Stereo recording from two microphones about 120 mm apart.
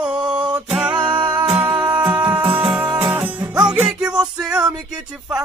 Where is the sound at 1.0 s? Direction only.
40° right (ahead or behind).